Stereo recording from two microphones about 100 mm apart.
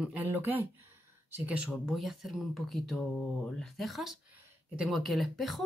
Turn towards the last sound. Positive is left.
turn(degrees=0)  # may be behind; listen again after turning